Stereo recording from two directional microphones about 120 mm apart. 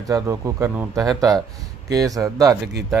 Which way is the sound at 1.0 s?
30° right (ahead or behind).